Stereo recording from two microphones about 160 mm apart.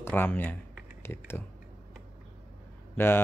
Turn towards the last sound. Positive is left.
turn(degrees=15)  # may be behind; listen again after turning